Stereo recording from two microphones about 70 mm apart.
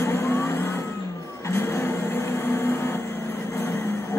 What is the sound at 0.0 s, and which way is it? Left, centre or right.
Vehicle, left.